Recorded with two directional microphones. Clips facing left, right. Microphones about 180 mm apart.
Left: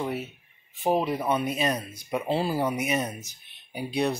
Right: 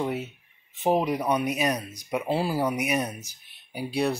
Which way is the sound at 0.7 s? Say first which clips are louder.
Right 1 dB; 20° right (ahead or behind).